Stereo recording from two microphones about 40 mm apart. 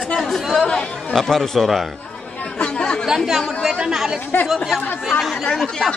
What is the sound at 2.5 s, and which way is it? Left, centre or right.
Chatter, left.